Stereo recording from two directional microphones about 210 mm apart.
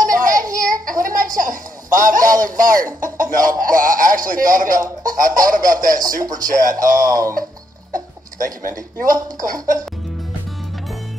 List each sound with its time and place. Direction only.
0.1 s child singing: 40° right (ahead or behind)
0.5 s a sound: 40° right (ahead or behind)
3.6 s speech: 40° right (ahead or behind)
8.6 s speech: 40° right (ahead or behind)